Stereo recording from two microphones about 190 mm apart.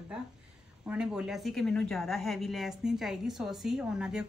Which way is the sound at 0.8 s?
5° right (ahead or behind).